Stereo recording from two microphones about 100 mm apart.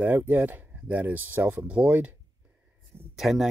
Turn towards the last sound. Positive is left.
turn(degrees=0)  # may be behind; listen again after turning